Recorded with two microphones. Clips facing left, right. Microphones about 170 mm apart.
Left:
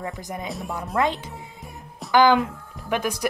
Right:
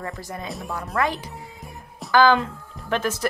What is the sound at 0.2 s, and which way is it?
A woman's voice, 20° left (ahead or behind).